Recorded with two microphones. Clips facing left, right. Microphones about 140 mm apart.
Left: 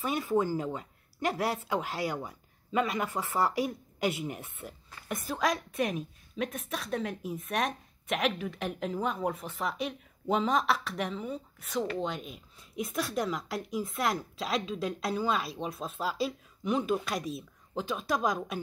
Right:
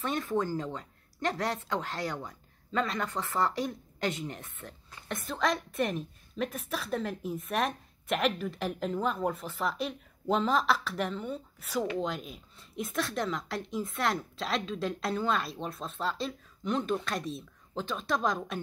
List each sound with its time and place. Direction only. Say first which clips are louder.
0.0 s speech: left 2 dB; 5° left (ahead or behind)